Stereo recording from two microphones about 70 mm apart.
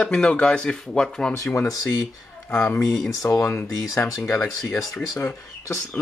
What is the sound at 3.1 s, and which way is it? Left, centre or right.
Speech, left.